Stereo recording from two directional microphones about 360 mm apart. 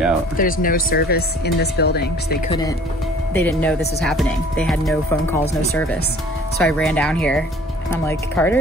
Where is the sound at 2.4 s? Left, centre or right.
Centre.